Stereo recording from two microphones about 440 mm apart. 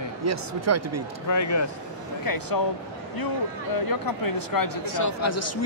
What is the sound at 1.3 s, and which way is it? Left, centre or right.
Speech, left.